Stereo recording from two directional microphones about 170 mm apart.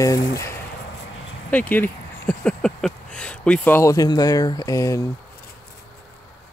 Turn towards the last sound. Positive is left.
turn(degrees=20)  # may be behind; listen again after turning